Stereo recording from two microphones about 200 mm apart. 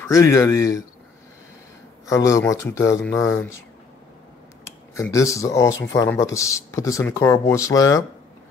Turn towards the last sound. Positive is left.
turn(degrees=15)  # may be behind; listen again after turning